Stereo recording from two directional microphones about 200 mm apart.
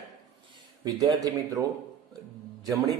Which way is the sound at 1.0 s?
20° right (ahead or behind).